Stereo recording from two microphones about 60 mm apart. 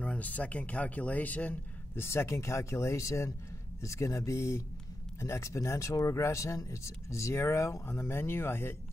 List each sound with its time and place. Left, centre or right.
0.0 s speech: left
2.0 s speech: left